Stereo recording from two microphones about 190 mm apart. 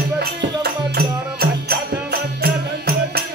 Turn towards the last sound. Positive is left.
turn(degrees=-55)  # may be behind; listen again after turning